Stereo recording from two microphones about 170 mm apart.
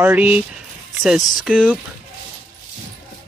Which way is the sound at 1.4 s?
5° left (ahead or behind).